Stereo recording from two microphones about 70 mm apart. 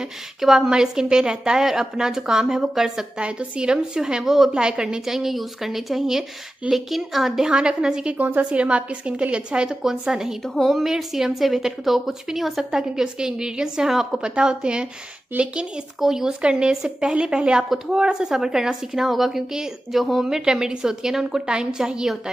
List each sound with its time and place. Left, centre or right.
0.0 s a woman's voice: centre
10.4 s a woman's voice: centre
15.3 s speech: right
16.0 s a woman's voice: centre